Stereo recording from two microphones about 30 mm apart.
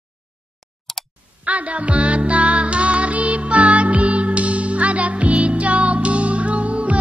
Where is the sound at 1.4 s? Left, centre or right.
Right.